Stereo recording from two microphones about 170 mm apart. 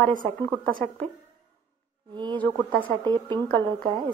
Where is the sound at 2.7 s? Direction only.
10° left (ahead or behind).